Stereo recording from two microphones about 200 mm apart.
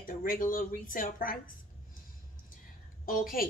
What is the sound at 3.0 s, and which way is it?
Speech, 45° left (ahead or behind).